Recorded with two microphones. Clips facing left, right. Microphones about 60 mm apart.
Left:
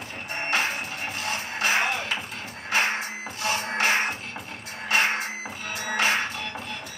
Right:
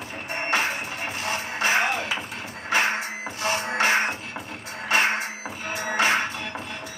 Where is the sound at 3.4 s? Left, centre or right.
Right.